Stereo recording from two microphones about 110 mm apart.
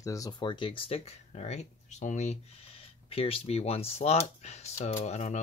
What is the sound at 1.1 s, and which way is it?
Speech, 90° left.